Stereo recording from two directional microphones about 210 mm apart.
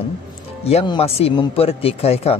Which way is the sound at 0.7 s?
30° left (ahead or behind).